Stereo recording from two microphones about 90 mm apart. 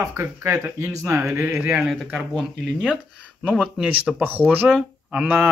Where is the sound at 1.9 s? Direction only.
5° left (ahead or behind).